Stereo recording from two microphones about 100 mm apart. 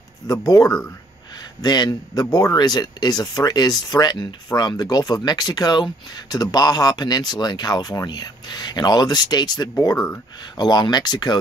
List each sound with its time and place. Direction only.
0.3 s speech: 35° left (ahead or behind)
0.7 s speech: 10° left (ahead or behind)
1.6 s speech: 45° left (ahead or behind)